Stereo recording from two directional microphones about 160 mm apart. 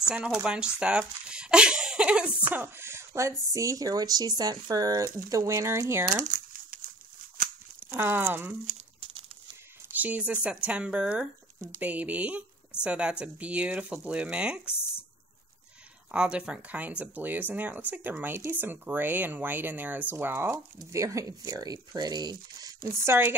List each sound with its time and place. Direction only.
0.1 s speech: 5° right (ahead or behind)
6.2 s crumpling: 55° right (ahead or behind)
7.8 s speech: 15° right (ahead or behind)
9.9 s speech: 10° right (ahead or behind)
16.1 s speech: 5° right (ahead or behind); by 22.8 s 25° right (ahead or behind)
23.0 s speech: 15° right (ahead or behind)